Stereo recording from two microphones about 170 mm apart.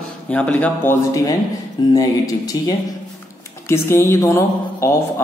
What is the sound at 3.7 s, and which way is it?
Speech, 15° left (ahead or behind).